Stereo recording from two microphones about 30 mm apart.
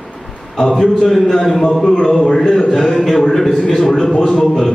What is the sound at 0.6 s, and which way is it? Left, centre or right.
A man's voice, centre.